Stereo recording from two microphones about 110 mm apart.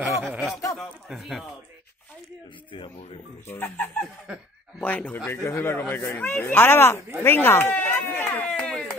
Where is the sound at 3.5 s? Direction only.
20° left (ahead or behind).